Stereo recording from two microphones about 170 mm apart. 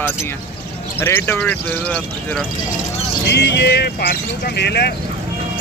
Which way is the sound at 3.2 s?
80° left.